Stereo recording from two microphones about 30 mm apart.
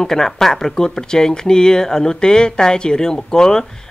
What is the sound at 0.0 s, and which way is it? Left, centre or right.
Speech, centre.